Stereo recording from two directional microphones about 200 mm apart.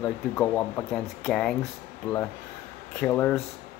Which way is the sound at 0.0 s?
10° left (ahead or behind).